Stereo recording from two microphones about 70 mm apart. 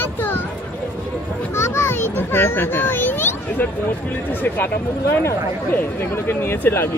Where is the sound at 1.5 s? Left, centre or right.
Left.